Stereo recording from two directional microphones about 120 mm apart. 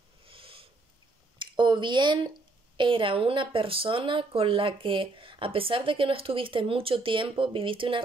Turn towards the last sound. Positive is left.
turn(degrees=-45)  # may be behind; listen again after turning